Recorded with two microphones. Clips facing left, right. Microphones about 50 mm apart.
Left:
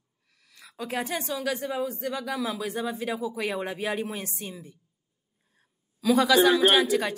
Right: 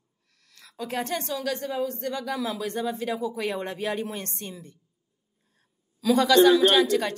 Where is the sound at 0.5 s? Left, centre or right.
Centre.